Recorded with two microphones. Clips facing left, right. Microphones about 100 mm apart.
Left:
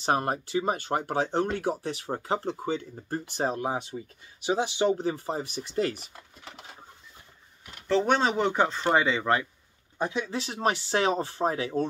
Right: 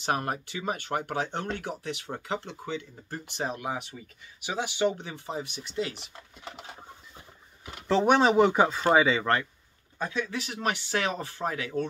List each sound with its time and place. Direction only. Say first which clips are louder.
0.0 s speech: left 3 dB; 30° left (ahead or behind)
7.9 s speech: right 3 dB; 10° right (ahead or behind); by 9.5 s 5° left (ahead or behind)
9.9 s speech: left 2 dB; 25° left (ahead or behind)